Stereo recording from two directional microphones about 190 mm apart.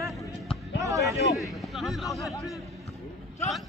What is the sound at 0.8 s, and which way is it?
Speech, 15° right (ahead or behind).